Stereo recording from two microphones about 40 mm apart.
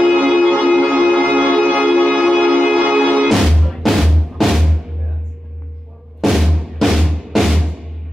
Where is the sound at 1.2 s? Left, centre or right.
Right.